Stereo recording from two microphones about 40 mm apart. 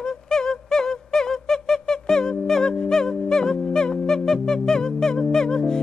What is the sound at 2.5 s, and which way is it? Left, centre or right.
Music, centre.